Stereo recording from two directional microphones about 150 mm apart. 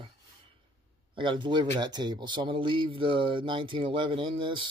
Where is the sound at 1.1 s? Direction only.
35° right (ahead or behind).